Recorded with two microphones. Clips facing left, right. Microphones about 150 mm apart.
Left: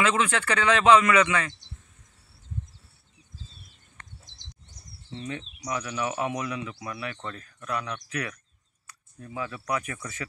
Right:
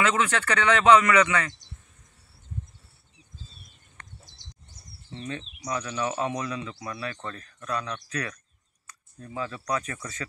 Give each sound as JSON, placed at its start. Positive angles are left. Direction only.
{"t": 0.1, "sound": "speech", "side_deg": 15}
{"t": 5.1, "sound": "speech", "side_deg": 15}